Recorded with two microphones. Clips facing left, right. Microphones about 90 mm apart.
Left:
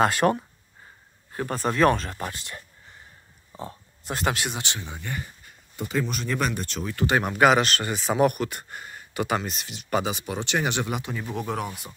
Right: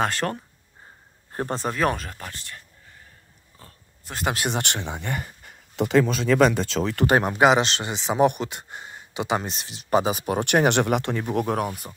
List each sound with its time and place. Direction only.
0.0 s speech: 10° left (ahead or behind)
1.7 s speech: 5° right (ahead or behind)
2.1 s speech: 15° left (ahead or behind)
3.5 s oink: 25° left (ahead or behind)
4.5 s speech: 65° right (ahead or behind); by 7.1 s 90° right
7.1 s speech: 35° right (ahead or behind)
7.3 s speech: 20° right (ahead or behind)
9.4 s speech: 35° right (ahead or behind)
10.4 s speech: 60° right (ahead or behind)